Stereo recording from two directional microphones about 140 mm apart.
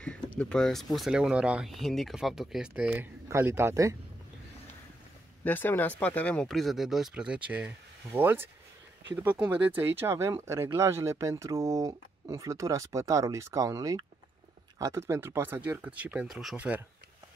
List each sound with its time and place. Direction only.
0.4 s speech: 5° left (ahead or behind); by 3.9 s 20° right (ahead or behind)
5.4 s speech: 15° left (ahead or behind); by 16.8 s 10° right (ahead or behind)